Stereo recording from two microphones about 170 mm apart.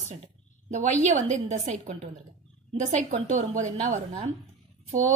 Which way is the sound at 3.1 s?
45° right (ahead or behind).